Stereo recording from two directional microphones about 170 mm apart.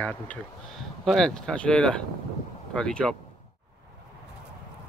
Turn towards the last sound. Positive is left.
turn(degrees=5)  # may be behind; listen again after turning